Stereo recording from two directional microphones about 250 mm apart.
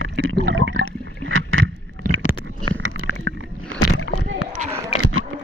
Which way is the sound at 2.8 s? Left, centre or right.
Right.